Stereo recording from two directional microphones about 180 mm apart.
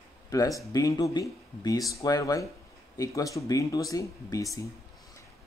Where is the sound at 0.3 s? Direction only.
20° left (ahead or behind).